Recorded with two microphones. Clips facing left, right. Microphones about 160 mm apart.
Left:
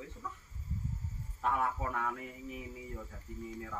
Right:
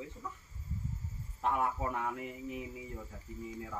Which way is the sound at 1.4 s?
15° right (ahead or behind).